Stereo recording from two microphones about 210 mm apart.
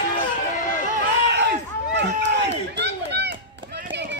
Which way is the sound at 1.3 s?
55° right (ahead or behind).